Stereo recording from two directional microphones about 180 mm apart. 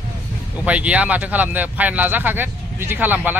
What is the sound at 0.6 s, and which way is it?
Speech, 5° right (ahead or behind).